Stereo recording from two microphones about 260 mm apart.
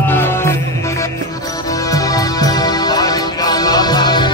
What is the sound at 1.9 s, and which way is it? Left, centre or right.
Music, centre.